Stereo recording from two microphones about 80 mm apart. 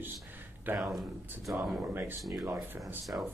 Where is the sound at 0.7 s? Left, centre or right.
Centre.